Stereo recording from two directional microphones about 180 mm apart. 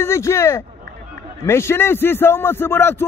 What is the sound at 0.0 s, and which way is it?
A man's voice, 15° left (ahead or behind).